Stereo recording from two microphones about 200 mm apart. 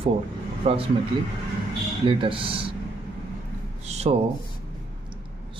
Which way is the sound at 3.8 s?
30° right (ahead or behind).